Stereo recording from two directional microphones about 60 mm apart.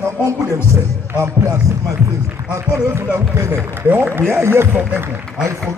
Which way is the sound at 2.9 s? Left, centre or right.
Right.